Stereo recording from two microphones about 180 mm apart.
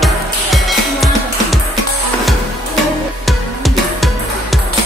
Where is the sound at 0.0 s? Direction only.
Centre (ahead or behind).